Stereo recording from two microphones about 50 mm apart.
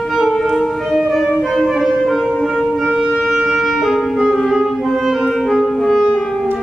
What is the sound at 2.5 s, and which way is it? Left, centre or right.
Shofar, centre.